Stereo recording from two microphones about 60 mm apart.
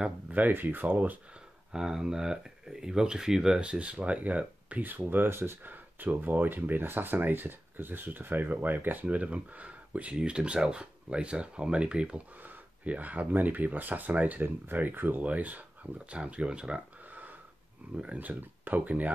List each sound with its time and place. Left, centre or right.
0.3 s speech: right
1.7 s speech: centre; by 19.1 s right